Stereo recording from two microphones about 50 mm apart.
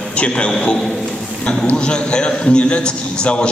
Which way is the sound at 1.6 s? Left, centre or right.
Centre.